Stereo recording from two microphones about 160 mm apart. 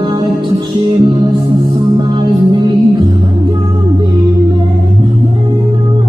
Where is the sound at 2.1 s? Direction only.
30° right (ahead or behind).